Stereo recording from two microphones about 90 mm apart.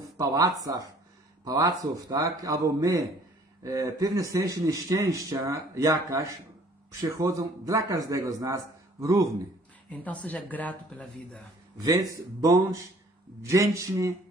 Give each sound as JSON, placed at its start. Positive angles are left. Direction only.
{"t": 0.3, "sound": "a man's voice", "side_deg": -45}
{"t": 9.8, "sound": "speech", "side_deg": 15}
{"t": 11.8, "sound": "a man's voice", "side_deg": -45}